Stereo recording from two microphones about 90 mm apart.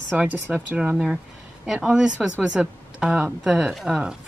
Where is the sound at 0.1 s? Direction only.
15° right (ahead or behind).